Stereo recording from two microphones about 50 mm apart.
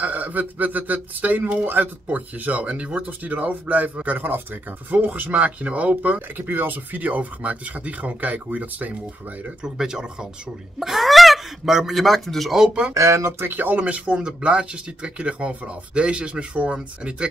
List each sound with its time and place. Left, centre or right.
0.0 s speech: right
6.3 s speech: right
9.6 s speech: centre
10.8 s speech: centre
12.9 s speech: right
13.5 s speech: right
13.7 s speech: right